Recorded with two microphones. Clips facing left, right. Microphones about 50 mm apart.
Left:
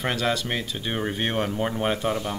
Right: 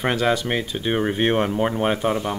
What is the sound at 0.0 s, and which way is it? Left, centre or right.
Speech, centre.